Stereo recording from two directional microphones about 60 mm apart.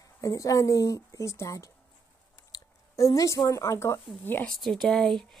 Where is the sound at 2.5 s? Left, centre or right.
Left.